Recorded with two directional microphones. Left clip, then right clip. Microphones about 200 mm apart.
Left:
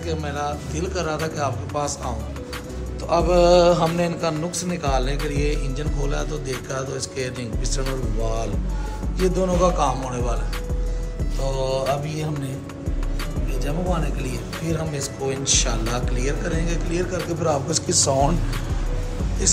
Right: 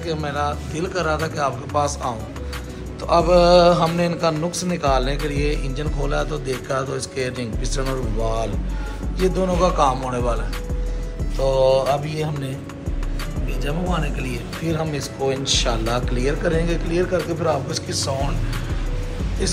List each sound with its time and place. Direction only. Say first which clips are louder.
0.0 s a man's voice: right 3 dB; 10° left (ahead or behind)
13.7 s a man's voice: right 1 dB; centre (ahead or behind)
17.6 s a man's voice: left 4 dB; 25° left (ahead or behind)
19.4 s speech: left 2 dB; 10° left (ahead or behind)